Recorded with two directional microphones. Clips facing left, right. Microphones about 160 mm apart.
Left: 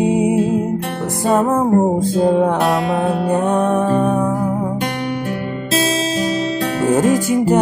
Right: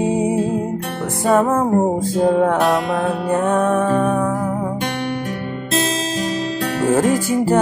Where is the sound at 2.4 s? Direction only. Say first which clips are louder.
Even; 25° left (ahead or behind).